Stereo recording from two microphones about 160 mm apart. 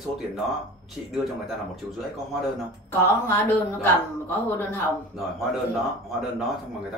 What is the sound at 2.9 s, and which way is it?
A woman's voice, 15° left (ahead or behind).